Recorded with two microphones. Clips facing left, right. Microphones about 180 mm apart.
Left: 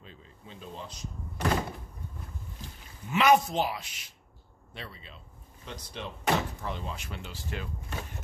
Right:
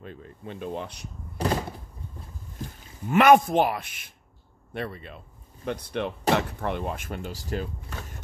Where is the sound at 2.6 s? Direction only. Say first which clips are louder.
Right 8 dB; 55° right (ahead or behind).